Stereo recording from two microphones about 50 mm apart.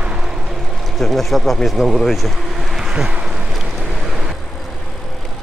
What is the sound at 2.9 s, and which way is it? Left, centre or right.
Speech, centre.